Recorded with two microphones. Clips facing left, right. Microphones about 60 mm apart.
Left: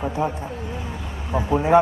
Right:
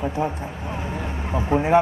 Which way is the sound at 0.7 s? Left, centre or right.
Right.